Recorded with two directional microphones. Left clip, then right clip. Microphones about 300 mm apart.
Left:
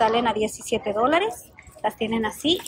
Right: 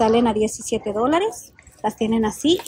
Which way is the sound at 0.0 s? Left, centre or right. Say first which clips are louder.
Right 3 dB; centre.